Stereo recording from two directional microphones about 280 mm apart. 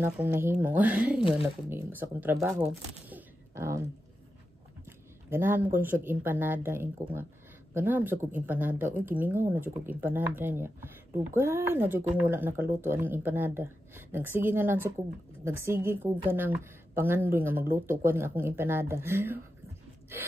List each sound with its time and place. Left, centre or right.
0.0 s speech: centre
5.3 s speech: centre